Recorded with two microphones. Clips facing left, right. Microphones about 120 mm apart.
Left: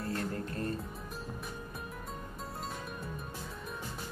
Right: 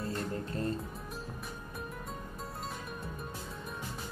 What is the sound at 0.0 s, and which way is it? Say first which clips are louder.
Music: even; 25° right (ahead or behind).